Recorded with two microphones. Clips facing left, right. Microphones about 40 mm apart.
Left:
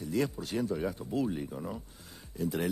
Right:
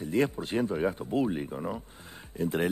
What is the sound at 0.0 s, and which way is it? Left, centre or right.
Speech, right.